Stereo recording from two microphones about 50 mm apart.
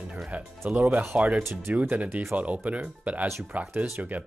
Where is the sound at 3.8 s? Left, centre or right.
Right.